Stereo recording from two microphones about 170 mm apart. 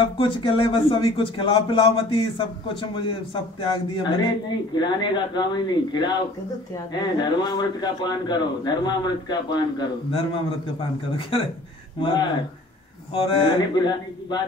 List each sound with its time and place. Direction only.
0.0 s a man's voice: 30° left (ahead or behind)